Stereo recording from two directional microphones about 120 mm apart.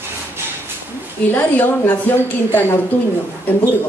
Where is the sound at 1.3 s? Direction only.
15° left (ahead or behind).